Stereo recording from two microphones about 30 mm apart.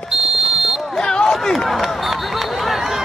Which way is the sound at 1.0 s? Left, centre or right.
Left.